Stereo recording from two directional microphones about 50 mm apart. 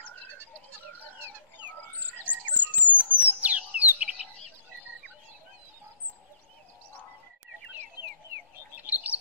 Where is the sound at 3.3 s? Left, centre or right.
Right.